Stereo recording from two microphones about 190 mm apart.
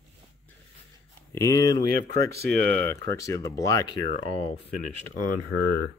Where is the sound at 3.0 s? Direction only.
15° left (ahead or behind).